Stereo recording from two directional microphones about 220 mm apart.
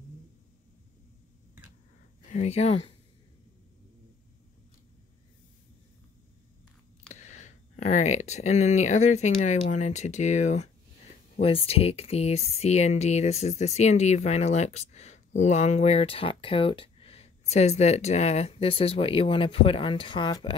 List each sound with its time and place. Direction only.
2.3 s speech: 30° left (ahead or behind)
7.2 s speech: 30° left (ahead or behind)